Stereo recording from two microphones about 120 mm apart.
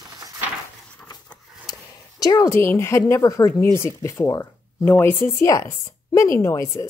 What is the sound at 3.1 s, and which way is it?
A woman's voice, 30° left (ahead or behind).